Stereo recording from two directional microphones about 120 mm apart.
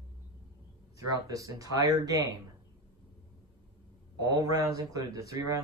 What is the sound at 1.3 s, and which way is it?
Speech, 30° right (ahead or behind).